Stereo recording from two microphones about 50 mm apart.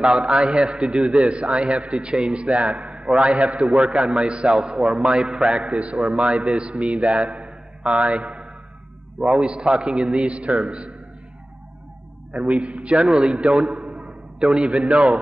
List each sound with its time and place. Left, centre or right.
0.0 s a man's voice: centre
5.8 s a man's voice: right
12.3 s a man's voice: right
13.7 s a sound: centre
14.5 s a man's voice: right